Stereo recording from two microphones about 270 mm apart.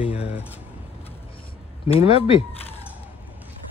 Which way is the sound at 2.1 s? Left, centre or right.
Left.